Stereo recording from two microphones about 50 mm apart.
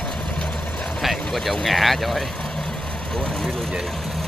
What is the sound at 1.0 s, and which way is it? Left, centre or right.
Speech, centre.